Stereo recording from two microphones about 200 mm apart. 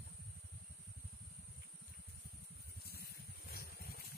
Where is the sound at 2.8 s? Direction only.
50° left (ahead or behind).